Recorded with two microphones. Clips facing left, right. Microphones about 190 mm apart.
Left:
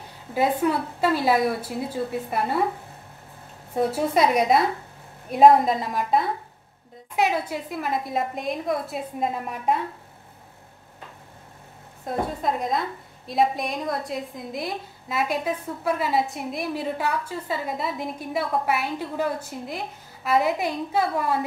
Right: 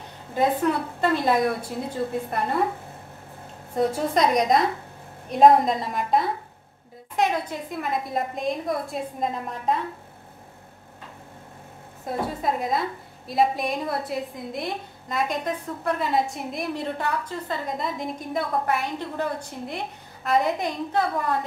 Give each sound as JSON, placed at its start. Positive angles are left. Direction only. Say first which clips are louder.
{"t": 0.3, "sound": "a woman's voice", "louder": "even", "side_deg": 5}
{"t": 3.7, "sound": "a woman's voice", "louder": "left 1 dB", "side_deg": 5}
{"t": 12.4, "sound": "a woman's voice", "louder": "even", "side_deg": 0}